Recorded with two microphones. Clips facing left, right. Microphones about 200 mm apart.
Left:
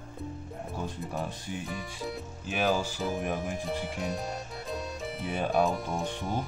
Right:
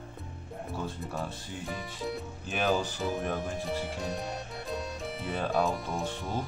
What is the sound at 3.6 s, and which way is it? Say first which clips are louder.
Music: even; centre (ahead or behind).